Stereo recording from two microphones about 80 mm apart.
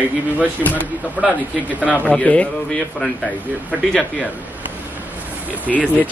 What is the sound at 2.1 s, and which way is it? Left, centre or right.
Speech, centre.